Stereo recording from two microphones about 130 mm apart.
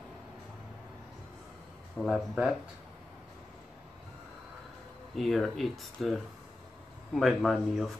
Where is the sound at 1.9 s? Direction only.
Centre (ahead or behind).